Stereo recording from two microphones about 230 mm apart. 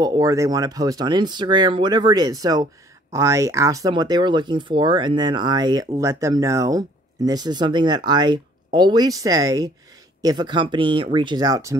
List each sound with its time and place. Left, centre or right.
0.0 s speech: centre